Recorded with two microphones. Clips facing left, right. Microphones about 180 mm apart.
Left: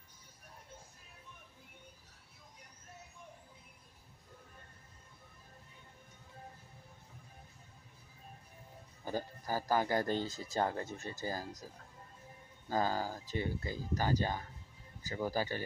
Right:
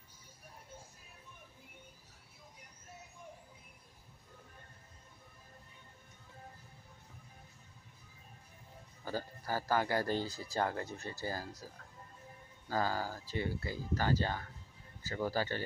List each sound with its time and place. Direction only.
9.0 s speech: 15° left (ahead or behind)
12.6 s speech: 20° left (ahead or behind)